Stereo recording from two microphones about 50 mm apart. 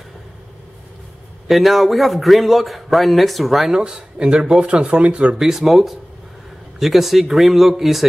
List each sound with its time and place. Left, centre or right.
1.5 s a man's voice: centre
3.7 s speech: centre
5.3 s a man's voice: centre